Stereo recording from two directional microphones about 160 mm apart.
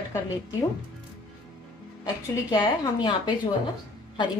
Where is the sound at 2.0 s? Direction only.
25° left (ahead or behind).